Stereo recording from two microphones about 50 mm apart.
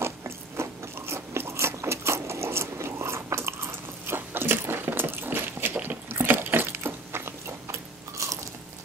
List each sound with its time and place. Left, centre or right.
0.6 s biting: right
4.0 s biting: right
6.1 s a sound: right